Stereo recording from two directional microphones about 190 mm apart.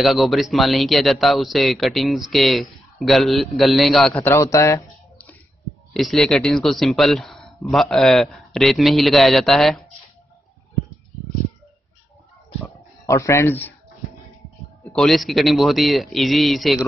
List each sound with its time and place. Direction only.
0.0 s speech: centre (ahead or behind)
4.1 s speech: 15° left (ahead or behind)
5.9 s speech: centre (ahead or behind)
13.0 s speech: 15° left (ahead or behind)
14.9 s speech: centre (ahead or behind)